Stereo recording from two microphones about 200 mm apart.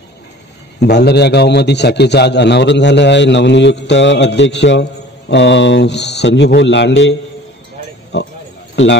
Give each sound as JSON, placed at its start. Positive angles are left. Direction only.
{"t": 0.7, "sound": "a man's voice", "side_deg": 55}